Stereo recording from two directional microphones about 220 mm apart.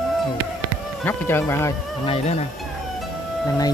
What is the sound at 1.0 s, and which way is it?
Speech, 10° left (ahead or behind).